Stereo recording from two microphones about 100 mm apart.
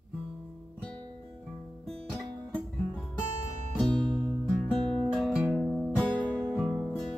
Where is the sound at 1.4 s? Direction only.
5° left (ahead or behind).